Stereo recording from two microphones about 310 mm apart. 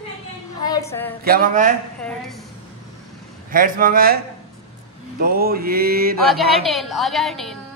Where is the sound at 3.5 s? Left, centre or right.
Right.